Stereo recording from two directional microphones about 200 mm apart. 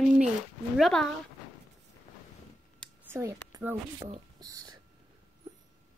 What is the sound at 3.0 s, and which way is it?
A woman's voice, 15° right (ahead or behind).